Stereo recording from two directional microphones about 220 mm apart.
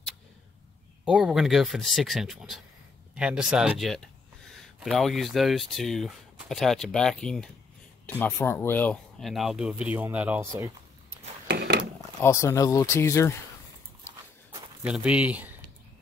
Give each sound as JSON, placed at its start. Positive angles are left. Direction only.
{"t": 1.0, "sound": "speech", "side_deg": -5}
{"t": 11.4, "sound": "a sound", "side_deg": -45}
{"t": 12.2, "sound": "speech", "side_deg": 15}
{"t": 14.8, "sound": "speech", "side_deg": -5}